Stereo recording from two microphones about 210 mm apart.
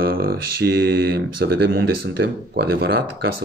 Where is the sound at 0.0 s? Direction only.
45° right (ahead or behind).